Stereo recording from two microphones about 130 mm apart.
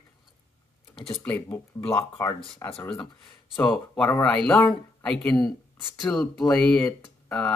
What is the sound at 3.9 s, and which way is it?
Speech, 10° left (ahead or behind).